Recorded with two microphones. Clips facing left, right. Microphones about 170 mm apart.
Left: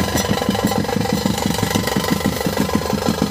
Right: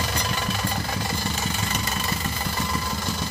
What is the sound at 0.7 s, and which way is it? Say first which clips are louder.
Engine: left 10 dB; 55° left (ahead or behind).